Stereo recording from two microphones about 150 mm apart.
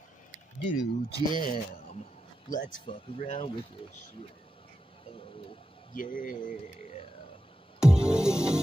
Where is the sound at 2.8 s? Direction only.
40° left (ahead or behind).